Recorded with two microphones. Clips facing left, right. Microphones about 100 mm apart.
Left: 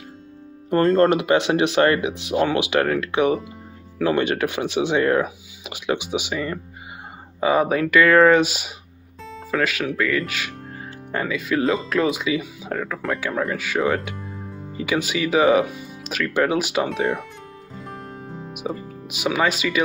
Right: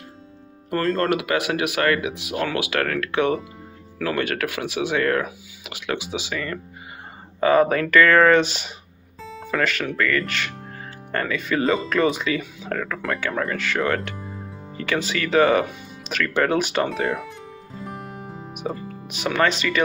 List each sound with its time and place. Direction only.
0.7 s speech: 30° left (ahead or behind)
7.3 s speech: 10° left (ahead or behind)
17.7 s music: centre (ahead or behind)